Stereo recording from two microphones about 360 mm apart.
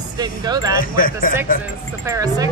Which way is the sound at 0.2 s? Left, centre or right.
Centre.